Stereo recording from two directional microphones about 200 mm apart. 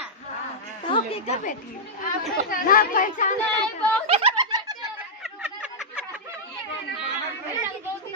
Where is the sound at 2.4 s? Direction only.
45° left (ahead or behind).